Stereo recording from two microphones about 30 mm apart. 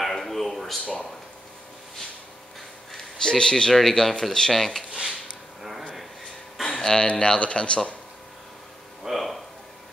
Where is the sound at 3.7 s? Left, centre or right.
Centre.